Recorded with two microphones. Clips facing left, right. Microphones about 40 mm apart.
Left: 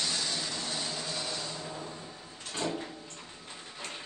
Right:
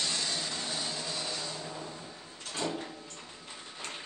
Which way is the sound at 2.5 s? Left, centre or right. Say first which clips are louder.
Left 1 dB; centre.